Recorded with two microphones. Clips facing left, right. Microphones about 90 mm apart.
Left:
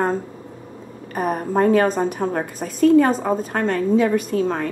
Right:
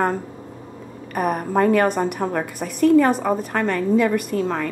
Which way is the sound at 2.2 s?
15° right (ahead or behind).